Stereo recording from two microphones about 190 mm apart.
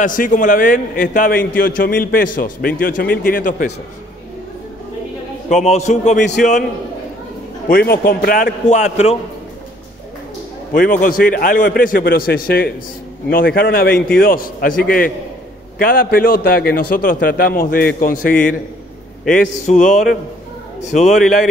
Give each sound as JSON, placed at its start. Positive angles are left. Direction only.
{"t": 0.0, "sound": "a man's voice", "side_deg": 45}
{"t": 5.5, "sound": "a man's voice", "side_deg": 35}
{"t": 7.7, "sound": "a man's voice", "side_deg": 55}
{"t": 10.7, "sound": "a man's voice", "side_deg": 45}